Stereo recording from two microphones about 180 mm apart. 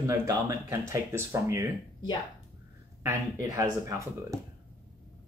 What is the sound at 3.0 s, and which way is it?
Speech, 15° right (ahead or behind).